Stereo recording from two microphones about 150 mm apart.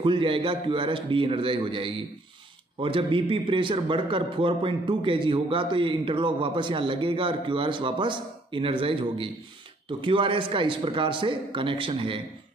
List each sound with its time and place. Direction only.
0.0 s a man's voice: 35° right (ahead or behind)